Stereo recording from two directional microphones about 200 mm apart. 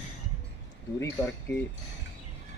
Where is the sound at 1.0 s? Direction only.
10° left (ahead or behind).